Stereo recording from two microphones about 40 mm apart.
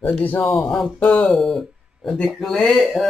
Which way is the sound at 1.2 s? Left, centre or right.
Centre.